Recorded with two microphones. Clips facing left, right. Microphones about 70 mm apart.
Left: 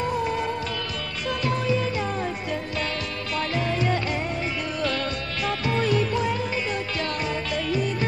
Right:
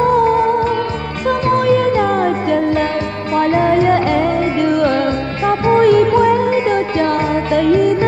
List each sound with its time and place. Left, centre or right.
0.0 s music: right
1.5 s music: right
3.3 s music: right
5.9 s music: right